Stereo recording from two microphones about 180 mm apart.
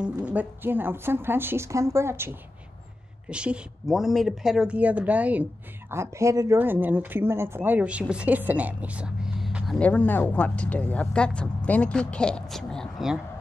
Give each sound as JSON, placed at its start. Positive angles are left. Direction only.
{"t": 0.0, "sound": "speech", "side_deg": -10}
{"t": 9.8, "sound": "speech", "side_deg": 10}